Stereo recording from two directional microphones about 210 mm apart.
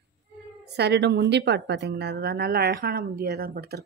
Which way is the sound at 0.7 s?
50° right (ahead or behind).